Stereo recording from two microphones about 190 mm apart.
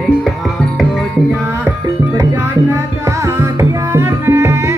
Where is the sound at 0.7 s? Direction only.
5° right (ahead or behind).